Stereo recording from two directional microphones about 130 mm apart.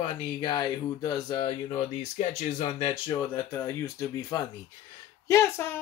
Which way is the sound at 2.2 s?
60° left (ahead or behind).